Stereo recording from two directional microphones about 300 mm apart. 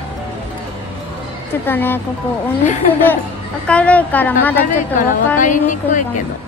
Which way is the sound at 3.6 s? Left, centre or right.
Centre.